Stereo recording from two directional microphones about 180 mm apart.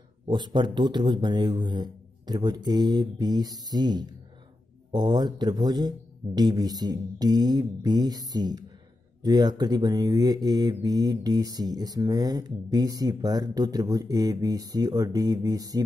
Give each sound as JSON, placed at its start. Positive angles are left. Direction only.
{"t": 0.3, "sound": "speech", "side_deg": -25}